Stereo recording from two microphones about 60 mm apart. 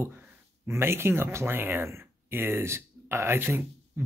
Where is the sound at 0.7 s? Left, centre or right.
Right.